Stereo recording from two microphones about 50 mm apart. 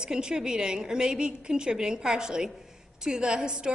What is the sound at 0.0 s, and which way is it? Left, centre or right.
A woman's voice, centre.